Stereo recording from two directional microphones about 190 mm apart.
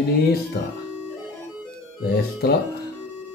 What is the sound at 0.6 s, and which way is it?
Speech, 55° left (ahead or behind).